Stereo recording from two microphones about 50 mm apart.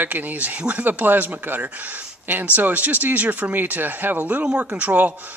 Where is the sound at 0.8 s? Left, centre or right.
Right.